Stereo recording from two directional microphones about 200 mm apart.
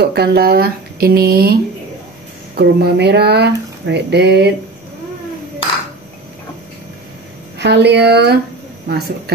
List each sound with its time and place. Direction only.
0.0 s speech: 55° right (ahead or behind)
7.5 s speech: 60° right (ahead or behind)